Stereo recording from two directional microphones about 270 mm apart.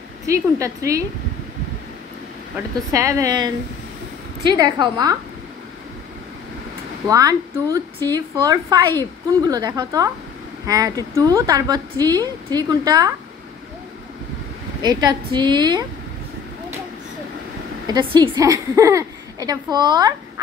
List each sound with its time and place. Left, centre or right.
0.3 s a woman's voice: centre
2.5 s a woman's voice: centre
7.1 s a woman's voice: centre
14.8 s a woman's voice: centre
18.1 s a woman's voice: centre